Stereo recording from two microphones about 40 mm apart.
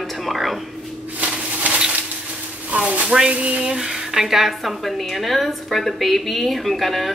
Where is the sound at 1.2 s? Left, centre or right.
Right.